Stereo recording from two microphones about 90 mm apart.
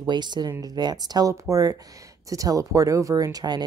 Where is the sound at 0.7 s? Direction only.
50° right (ahead or behind).